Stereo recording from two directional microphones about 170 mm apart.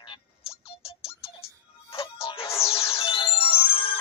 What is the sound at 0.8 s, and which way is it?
Music, 35° left (ahead or behind).